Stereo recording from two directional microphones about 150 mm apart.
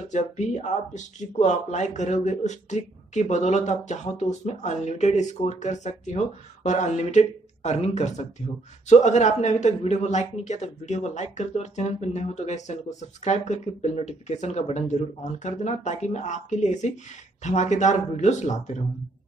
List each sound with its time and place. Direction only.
0.1 s speech: 50° left (ahead or behind)